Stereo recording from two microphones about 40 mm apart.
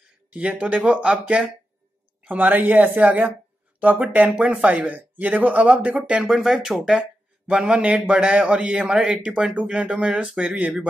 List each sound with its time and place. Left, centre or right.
0.3 s speech: right
2.2 s speech: right
3.0 s speech: right
4.4 s speech: right
5.7 s a man's voice: right
6.2 s speech: centre
7.0 s a sound: right
7.8 s a man's voice: right